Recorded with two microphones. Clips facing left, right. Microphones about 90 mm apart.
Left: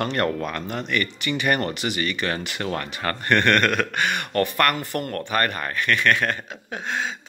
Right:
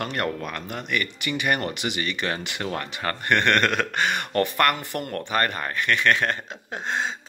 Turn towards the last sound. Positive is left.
turn(degrees=-30)  # may be behind; listen again after turning